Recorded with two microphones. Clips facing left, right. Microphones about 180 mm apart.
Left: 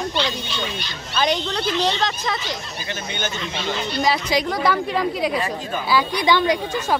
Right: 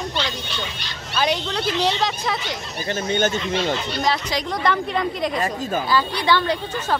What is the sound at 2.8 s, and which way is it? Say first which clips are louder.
Speech: right 8 dB; 45° right (ahead or behind).